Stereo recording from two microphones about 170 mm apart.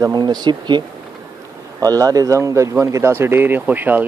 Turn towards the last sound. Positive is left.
turn(degrees=-10)  # may be behind; listen again after turning